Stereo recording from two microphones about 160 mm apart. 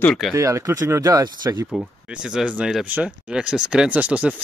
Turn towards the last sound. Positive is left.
turn(degrees=-5)  # may be behind; listen again after turning